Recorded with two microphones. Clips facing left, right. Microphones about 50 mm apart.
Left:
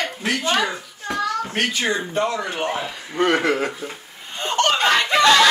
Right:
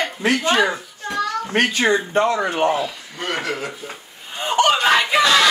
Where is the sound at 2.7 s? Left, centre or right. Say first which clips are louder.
Left 2 dB; left.